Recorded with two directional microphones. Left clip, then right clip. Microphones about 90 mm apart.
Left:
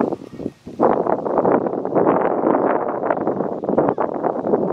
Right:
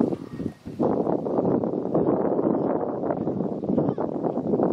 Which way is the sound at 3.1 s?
60° left (ahead or behind).